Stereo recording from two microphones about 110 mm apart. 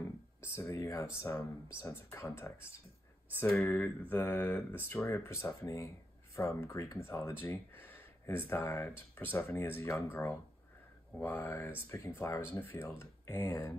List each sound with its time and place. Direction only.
0.4 s speech: 25° left (ahead or behind)